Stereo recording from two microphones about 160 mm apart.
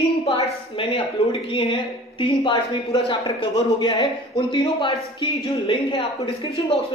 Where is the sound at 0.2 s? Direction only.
35° left (ahead or behind).